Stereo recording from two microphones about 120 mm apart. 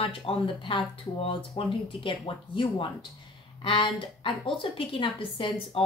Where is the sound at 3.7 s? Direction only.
45° left (ahead or behind).